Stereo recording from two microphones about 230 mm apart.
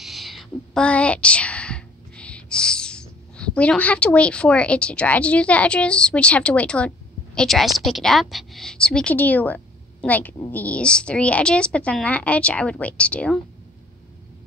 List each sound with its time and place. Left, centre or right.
0.0 s a woman's voice: centre